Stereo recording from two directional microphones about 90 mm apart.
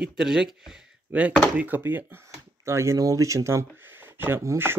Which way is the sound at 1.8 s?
25° right (ahead or behind).